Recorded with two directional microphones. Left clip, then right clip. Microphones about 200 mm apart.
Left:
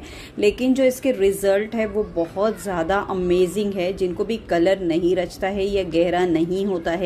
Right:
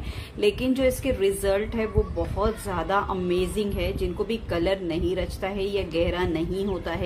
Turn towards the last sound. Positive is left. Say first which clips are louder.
# left 6 dB
turn(degrees=20)  # may be behind; listen again after turning